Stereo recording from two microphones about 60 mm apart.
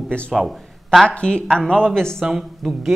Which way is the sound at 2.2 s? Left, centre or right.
Centre.